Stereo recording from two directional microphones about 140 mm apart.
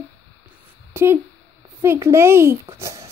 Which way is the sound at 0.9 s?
15° right (ahead or behind).